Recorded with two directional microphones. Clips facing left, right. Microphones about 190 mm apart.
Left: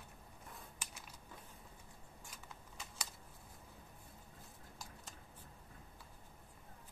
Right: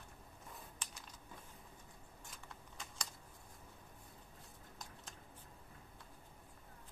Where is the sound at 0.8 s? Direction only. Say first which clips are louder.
Even; 10° left (ahead or behind).